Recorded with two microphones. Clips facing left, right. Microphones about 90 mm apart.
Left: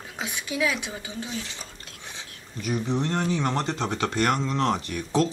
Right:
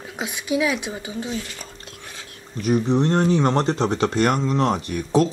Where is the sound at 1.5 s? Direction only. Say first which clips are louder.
Right 3 dB; 20° left (ahead or behind).